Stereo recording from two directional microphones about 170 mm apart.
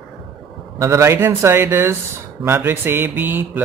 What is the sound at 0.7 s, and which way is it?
Speech, 15° right (ahead or behind).